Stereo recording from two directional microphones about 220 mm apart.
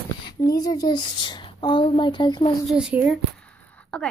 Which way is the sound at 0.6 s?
15° left (ahead or behind).